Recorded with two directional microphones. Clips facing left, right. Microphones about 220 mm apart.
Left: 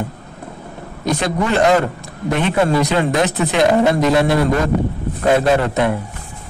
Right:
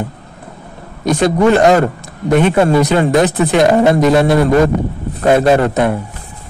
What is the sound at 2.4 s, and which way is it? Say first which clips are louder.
Speech: right 2 dB; 50° right (ahead or behind).